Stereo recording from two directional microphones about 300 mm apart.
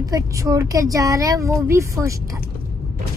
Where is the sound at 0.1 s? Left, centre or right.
Centre.